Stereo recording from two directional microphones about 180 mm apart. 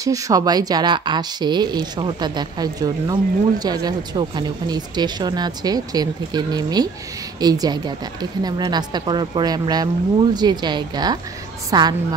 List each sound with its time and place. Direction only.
0.0 s speech: 20° right (ahead or behind)